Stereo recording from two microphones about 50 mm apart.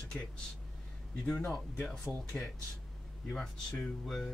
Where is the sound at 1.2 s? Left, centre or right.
Centre.